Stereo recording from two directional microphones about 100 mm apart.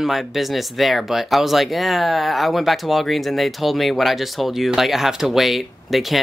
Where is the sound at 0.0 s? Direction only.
Centre (ahead or behind).